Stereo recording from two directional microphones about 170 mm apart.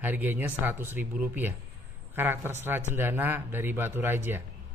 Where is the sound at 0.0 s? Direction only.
10° right (ahead or behind).